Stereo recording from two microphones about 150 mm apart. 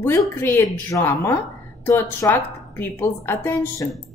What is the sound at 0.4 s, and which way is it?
A woman's voice, 15° left (ahead or behind).